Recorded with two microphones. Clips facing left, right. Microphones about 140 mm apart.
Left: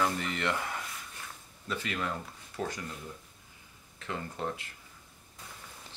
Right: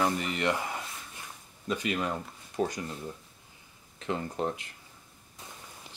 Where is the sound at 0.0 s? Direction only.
15° right (ahead or behind).